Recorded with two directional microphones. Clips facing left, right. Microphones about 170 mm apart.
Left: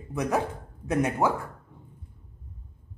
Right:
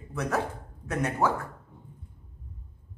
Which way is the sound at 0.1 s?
15° left (ahead or behind).